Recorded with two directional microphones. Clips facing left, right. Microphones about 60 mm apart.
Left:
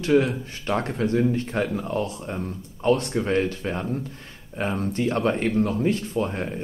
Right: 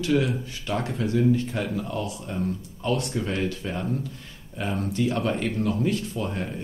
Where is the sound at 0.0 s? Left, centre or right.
Left.